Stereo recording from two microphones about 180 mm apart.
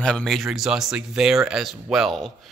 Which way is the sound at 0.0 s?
5° left (ahead or behind).